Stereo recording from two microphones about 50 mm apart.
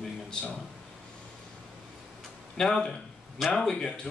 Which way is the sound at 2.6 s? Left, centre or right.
Centre.